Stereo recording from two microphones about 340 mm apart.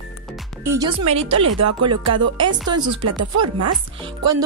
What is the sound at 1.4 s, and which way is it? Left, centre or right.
Speech, right.